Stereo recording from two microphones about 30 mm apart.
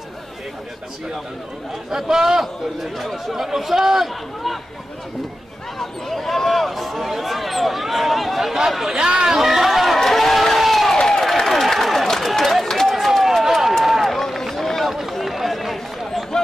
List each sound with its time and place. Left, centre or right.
1.9 s speech: centre
3.0 s speech: centre
3.4 s speech: centre
5.8 s speech: centre
8.9 s speech: right
9.4 s speech: centre
9.7 s a sound: centre
10.0 s crowd: centre
11.0 s a sound: left
11.2 s a sound: centre
12.8 s run: centre
14.3 s run: centre